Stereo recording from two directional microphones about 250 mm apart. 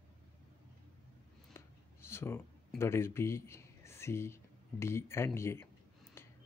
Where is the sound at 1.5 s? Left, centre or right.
Centre.